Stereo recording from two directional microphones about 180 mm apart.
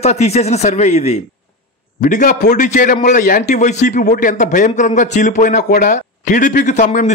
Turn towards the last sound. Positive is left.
turn(degrees=40)  # may be behind; listen again after turning